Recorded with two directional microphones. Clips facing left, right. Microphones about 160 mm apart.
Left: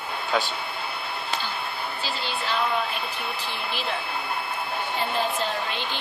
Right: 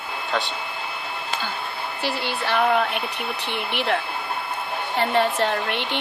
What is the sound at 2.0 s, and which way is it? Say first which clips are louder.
A woman's voice: right 6 dB; 65° right (ahead or behind).